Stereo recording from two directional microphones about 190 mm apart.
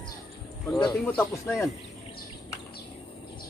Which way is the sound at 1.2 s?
10° left (ahead or behind).